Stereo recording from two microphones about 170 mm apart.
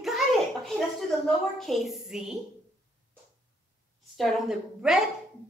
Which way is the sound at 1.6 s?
Centre (ahead or behind).